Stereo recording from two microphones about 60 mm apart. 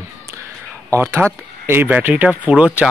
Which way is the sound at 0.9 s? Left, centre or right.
Right.